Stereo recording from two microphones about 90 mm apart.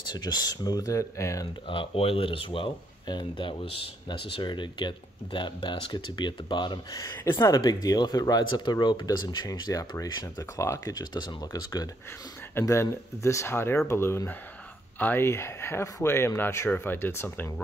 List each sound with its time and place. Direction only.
0.1 s speech: 50° left (ahead or behind)
1.7 s speech: 80° left
3.1 s speech: 65° left (ahead or behind)
7.0 s speech: 30° left (ahead or behind)
7.3 s speech: 45° left (ahead or behind)
8.5 s speech: 55° left (ahead or behind)
12.5 s speech: 35° left (ahead or behind)